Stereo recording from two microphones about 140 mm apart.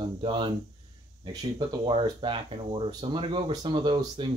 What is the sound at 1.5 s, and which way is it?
Speech, 35° right (ahead or behind).